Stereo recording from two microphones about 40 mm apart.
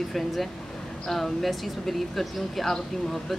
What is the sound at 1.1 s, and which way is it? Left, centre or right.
Speech, centre.